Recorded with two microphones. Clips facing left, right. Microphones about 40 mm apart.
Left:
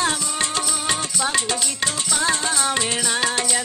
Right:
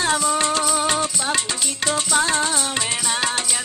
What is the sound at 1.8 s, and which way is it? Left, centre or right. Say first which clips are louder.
Music: right 3 dB; right.